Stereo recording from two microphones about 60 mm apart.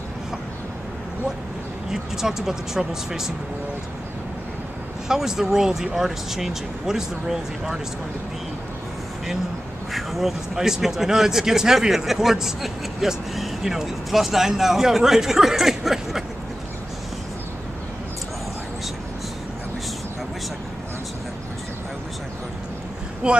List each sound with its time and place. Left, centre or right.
1.9 s speech: centre
5.0 s speech: centre
9.9 s speech: centre
23.2 s speech: centre